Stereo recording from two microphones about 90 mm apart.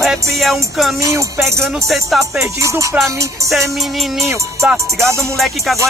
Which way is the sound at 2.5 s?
35° right (ahead or behind).